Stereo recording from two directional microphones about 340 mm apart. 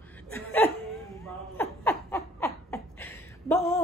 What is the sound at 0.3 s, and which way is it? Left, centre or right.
Laughter, centre.